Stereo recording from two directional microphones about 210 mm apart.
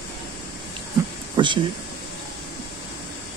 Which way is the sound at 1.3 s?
20° right (ahead or behind).